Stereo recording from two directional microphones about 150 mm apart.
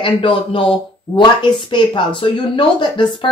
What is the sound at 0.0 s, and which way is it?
Speech, 35° left (ahead or behind).